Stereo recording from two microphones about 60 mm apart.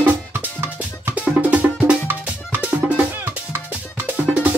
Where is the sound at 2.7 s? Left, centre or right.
Right.